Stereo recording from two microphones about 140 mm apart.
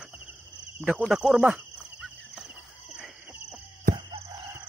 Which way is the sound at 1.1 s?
5° right (ahead or behind).